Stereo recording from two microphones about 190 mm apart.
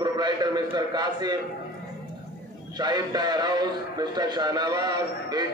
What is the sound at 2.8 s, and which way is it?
A man's voice, 20° right (ahead or behind).